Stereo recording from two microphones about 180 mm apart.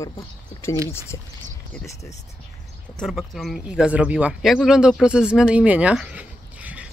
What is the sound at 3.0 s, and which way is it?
Speech, centre (ahead or behind).